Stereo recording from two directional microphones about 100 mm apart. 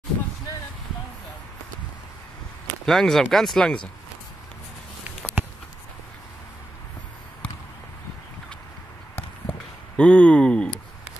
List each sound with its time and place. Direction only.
2.8 s speech: 5° left (ahead or behind)
5.2 s a sound: 15° left (ahead or behind)
9.9 s speech: 10° left (ahead or behind)